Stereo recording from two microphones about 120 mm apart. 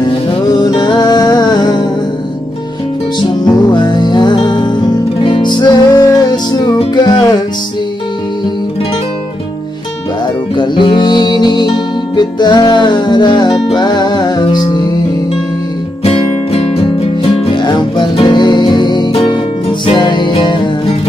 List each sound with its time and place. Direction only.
0.5 s music: 35° left (ahead or behind)
3.2 s music: 35° left (ahead or behind)
10.5 s music: 40° left (ahead or behind)
16.0 s music: 55° left (ahead or behind)
17.6 s music: 40° left (ahead or behind)